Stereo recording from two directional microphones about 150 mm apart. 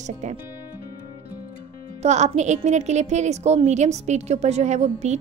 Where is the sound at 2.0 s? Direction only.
50° right (ahead or behind).